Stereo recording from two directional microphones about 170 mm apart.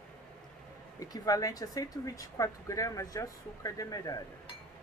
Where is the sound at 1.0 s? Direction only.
20° left (ahead or behind).